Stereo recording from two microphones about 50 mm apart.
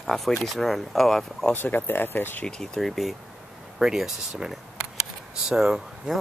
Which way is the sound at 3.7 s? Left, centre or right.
Centre.